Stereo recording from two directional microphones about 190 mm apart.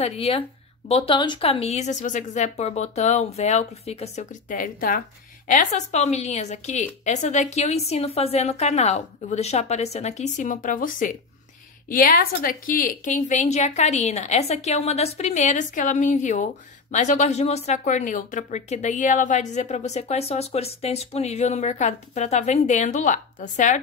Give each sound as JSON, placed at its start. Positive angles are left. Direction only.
{"t": 0.0, "sound": "speech", "side_deg": 30}